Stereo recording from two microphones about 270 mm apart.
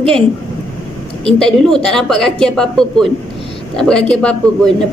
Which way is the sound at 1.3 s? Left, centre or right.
Centre.